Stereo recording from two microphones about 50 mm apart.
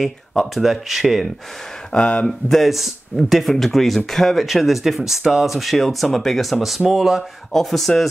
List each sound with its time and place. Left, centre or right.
0.0 s speech: centre
1.9 s speech: left
2.4 s speech: centre
7.5 s speech: centre